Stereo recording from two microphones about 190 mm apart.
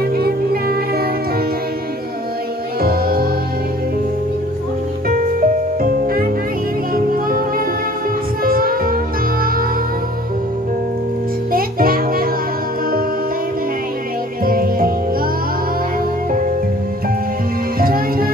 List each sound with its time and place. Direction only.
0.0 s music: 55° right (ahead or behind)
2.8 s music: 50° right (ahead or behind)
5.0 s music: 50° right (ahead or behind)
11.5 s music: 50° right (ahead or behind)
14.4 s music: 50° right (ahead or behind)
17.7 s music: 50° right (ahead or behind)